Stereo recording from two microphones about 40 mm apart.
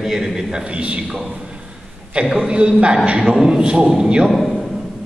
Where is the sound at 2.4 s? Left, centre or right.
Right.